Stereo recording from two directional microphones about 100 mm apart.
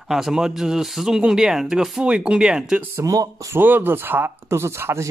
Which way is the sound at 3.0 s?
35° right (ahead or behind).